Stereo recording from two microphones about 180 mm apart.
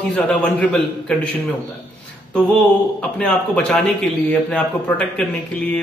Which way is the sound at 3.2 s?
5° left (ahead or behind).